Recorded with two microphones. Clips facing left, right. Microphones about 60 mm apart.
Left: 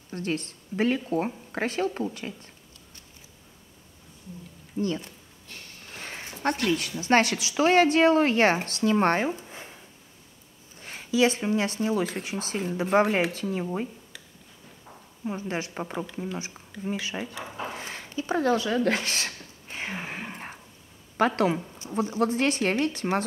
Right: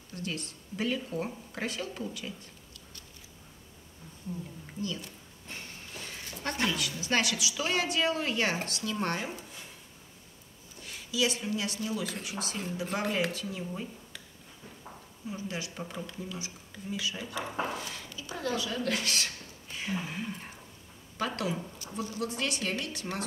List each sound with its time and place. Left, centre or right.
0.1 s speech: left
4.7 s speech: left
5.9 s a sound: left
6.7 s speech: left
10.8 s speech: left
15.2 s speech: left
21.5 s speech: left
22.2 s speech: left